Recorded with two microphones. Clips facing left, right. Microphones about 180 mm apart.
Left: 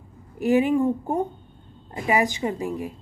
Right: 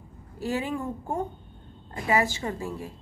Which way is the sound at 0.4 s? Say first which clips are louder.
Left 10 dB; 20° left (ahead or behind).